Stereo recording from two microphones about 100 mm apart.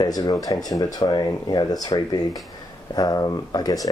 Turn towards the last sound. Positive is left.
turn(degrees=40)  # may be behind; listen again after turning